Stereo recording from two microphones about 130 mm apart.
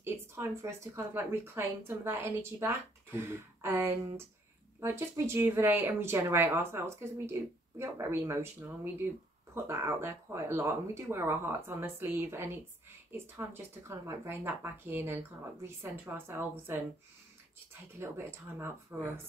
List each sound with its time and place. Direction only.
0.0 s speech: 20° right (ahead or behind)
17.9 s speech: 20° right (ahead or behind)